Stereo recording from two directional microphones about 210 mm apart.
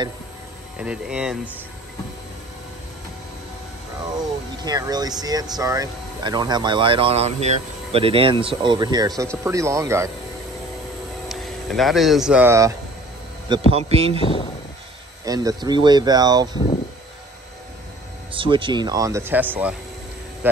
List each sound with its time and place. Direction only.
0.7 s speech: 5° right (ahead or behind)
4.6 s speech: 20° right (ahead or behind)
11.2 s speech: centre (ahead or behind)
13.5 s speech: 25° right (ahead or behind)
14.2 s speech: 25° left (ahead or behind)
15.2 s speech: 15° right (ahead or behind)
18.3 s speech: 25° right (ahead or behind); by 19.7 s 10° right (ahead or behind)